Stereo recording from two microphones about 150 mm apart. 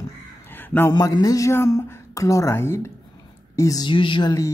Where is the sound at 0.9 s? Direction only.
25° left (ahead or behind).